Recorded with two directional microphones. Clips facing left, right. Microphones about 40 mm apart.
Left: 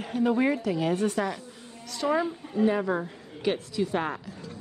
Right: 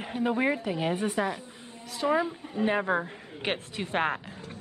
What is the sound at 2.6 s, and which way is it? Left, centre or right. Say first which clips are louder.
A woman's voice: left 1 dB; right.